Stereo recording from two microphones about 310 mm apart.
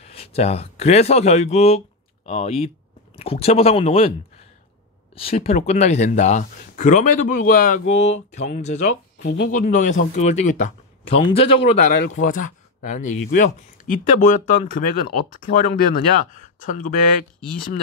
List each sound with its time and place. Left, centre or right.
0.0 s speech: centre
5.1 s speech: centre